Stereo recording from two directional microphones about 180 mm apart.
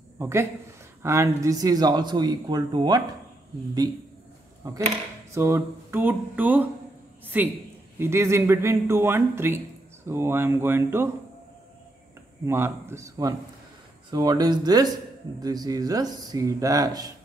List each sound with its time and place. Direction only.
0.2 s speech: 15° right (ahead or behind)
4.6 s speech: 20° right (ahead or behind)
12.4 s speech: 15° right (ahead or behind)